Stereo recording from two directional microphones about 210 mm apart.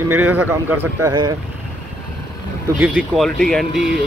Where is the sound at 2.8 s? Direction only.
5° right (ahead or behind).